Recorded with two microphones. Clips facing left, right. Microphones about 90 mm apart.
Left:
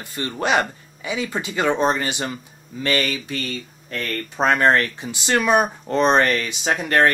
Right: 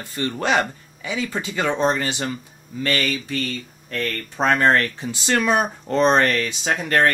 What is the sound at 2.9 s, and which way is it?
Speech, centre (ahead or behind).